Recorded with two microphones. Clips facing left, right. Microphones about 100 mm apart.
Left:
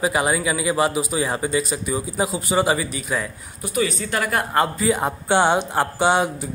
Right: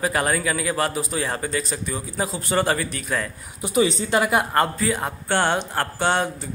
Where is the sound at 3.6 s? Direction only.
25° right (ahead or behind).